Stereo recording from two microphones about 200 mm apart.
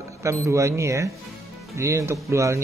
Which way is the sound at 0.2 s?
15° right (ahead or behind).